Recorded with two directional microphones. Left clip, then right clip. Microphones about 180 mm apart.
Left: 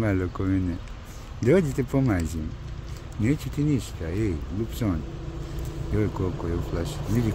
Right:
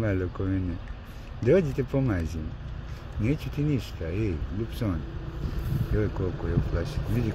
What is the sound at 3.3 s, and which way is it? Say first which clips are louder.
Speech: left 3 dB; 10° left (ahead or behind).